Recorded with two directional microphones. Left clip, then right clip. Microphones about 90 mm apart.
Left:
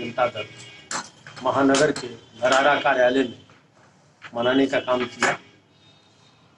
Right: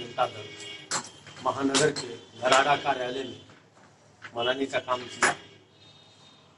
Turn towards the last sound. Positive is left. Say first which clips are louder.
# left 3 dB
turn(degrees=30)  # may be behind; listen again after turning